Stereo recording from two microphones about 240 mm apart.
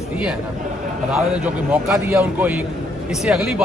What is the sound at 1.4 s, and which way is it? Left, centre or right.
Speech, centre.